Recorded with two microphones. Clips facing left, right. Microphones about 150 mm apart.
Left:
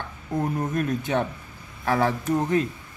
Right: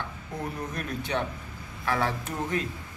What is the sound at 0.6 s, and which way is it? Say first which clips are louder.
Speech: left 8 dB; 45° left (ahead or behind).